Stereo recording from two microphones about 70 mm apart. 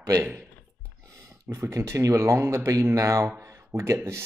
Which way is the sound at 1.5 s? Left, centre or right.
Right.